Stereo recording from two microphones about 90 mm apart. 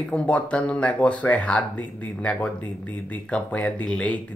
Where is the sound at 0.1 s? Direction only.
15° left (ahead or behind).